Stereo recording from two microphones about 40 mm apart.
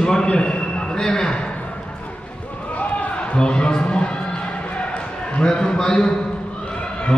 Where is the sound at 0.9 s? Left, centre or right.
Centre.